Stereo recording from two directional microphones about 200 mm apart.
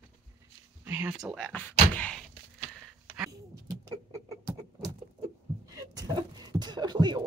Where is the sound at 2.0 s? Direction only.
5° left (ahead or behind).